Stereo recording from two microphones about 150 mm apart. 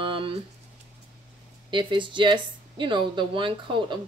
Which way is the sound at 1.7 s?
35° right (ahead or behind).